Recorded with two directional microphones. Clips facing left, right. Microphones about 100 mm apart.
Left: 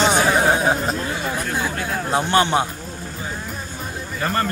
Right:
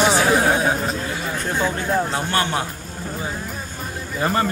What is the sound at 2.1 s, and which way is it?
Speech, 20° left (ahead or behind).